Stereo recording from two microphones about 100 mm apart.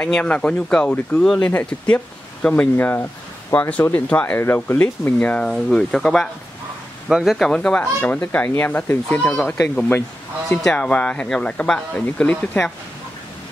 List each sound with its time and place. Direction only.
0.0 s speech: 10° left (ahead or behind)
7.1 s speech: 5° right (ahead or behind)
7.3 s speech: 5° left (ahead or behind)